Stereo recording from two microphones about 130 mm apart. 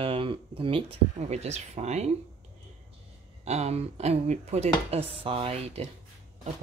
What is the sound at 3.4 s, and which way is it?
Speech, 55° right (ahead or behind).